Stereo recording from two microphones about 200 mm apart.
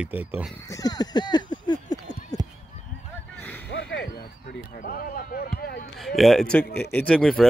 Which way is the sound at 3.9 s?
55° left (ahead or behind).